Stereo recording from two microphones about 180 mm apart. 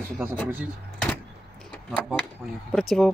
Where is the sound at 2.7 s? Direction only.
Centre (ahead or behind).